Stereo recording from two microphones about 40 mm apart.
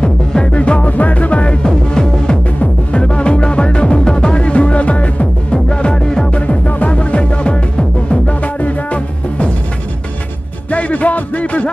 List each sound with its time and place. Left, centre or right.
0.0 s music: centre
0.5 s music: left
6.3 s music: left
10.7 s music: left